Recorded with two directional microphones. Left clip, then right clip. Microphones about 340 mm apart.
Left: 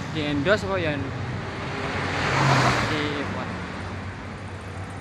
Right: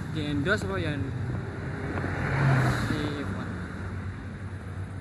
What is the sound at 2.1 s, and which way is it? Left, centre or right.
Vehicle, left.